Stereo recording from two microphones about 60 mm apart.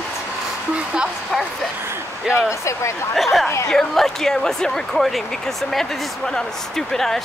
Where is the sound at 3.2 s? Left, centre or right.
Centre.